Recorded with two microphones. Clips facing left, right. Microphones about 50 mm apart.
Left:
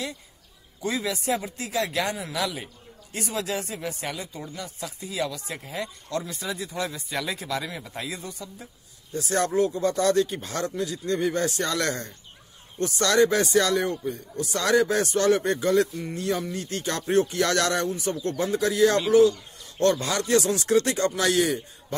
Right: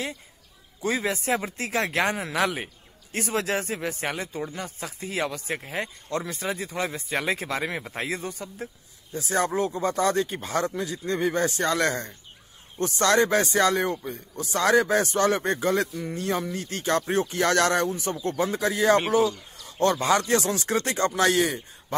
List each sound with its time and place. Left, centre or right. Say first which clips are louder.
0.8 s speech: right 1 dB; right
9.1 s speech: left 1 dB; centre